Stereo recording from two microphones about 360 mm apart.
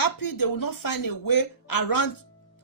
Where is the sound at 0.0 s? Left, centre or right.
Left.